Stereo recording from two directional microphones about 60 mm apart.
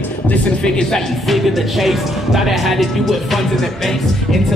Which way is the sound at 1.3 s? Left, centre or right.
Centre.